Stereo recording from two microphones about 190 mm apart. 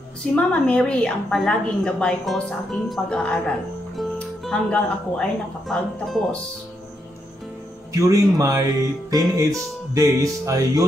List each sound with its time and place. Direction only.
0.5 s a woman's voice: 5° left (ahead or behind)
3.9 s music: centre (ahead or behind)
5.7 s a woman's voice: centre (ahead or behind)
7.9 s music: 15° right (ahead or behind)